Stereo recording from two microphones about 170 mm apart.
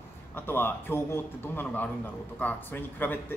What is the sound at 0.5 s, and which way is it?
Speech, 15° left (ahead or behind).